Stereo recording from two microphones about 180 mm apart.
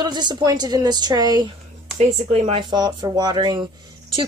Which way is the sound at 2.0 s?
35° right (ahead or behind).